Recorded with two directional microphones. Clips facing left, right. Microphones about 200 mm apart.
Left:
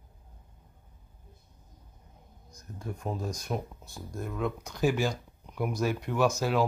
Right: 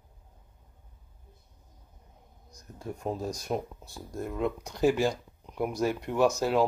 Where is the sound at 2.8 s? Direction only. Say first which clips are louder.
Right 2 dB; 30° right (ahead or behind).